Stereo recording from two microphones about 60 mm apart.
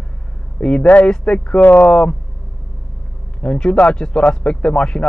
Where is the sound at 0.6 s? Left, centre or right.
Centre.